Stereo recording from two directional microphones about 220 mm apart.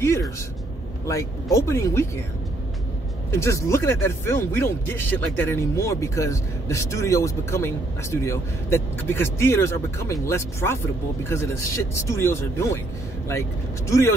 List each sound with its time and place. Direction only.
1.0 s speech: 15° left (ahead or behind)
3.3 s speech: 15° left (ahead or behind)